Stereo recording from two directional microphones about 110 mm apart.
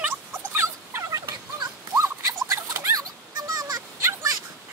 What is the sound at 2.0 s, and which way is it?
Rodents, 30° right (ahead or behind).